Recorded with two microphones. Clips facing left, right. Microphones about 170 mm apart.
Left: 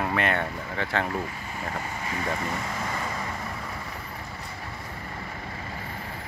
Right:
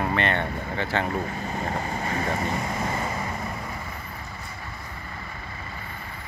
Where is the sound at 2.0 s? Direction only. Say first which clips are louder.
Right 1 dB; 40° right (ahead or behind).